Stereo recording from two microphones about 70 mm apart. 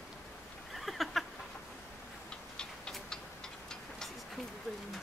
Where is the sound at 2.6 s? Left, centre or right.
Centre.